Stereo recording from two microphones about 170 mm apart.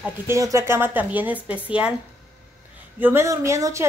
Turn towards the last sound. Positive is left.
turn(degrees=-20)  # may be behind; listen again after turning